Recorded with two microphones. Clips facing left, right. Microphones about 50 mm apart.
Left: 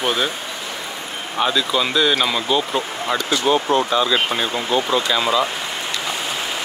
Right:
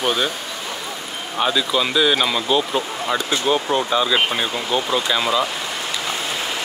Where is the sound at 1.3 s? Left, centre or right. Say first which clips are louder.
Even; centre.